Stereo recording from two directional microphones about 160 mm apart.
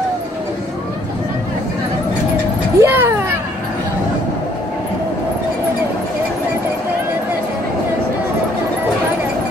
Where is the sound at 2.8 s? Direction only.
15° right (ahead or behind).